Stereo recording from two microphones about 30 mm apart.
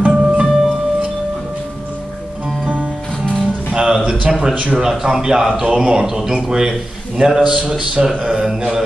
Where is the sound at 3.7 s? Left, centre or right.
Right.